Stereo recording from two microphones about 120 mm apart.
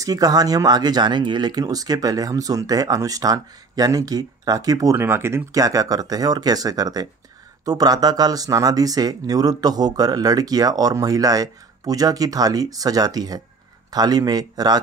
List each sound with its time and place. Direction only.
0.0 s speech: 30° right (ahead or behind)